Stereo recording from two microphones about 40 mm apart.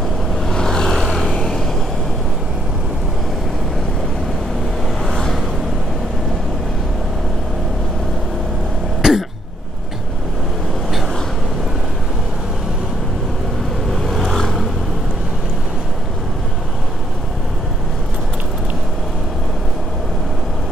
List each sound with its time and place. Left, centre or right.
0.5 s vehicle: centre
1.4 s vehicle: centre
5.0 s vehicle: centre
9.0 s cough: centre
13.8 s vehicle: centre